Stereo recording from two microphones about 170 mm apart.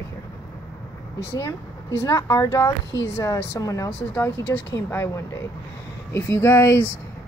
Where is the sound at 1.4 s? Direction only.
20° left (ahead or behind).